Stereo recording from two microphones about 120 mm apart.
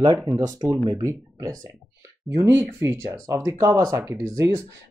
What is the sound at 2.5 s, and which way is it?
Speech, 20° right (ahead or behind).